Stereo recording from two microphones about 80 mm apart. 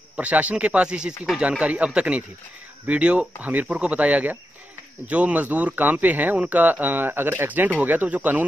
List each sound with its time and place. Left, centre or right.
0.1 s speech: centre